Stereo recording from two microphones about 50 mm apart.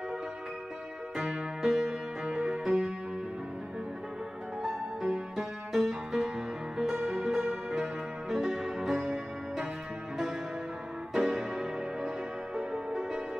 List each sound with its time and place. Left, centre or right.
1.1 s music: centre
1.6 s music: centre
2.2 s music: right
4.6 s music: centre
11.1 s music: centre